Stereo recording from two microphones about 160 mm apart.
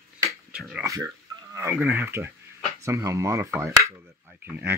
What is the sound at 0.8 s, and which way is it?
Speech, 20° right (ahead or behind).